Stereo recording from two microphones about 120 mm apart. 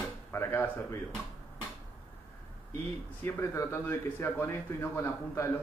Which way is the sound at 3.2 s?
20° left (ahead or behind).